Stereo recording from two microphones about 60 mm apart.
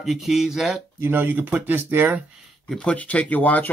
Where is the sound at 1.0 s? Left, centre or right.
Right.